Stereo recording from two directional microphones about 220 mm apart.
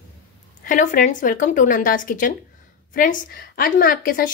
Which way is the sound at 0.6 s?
35° left (ahead or behind).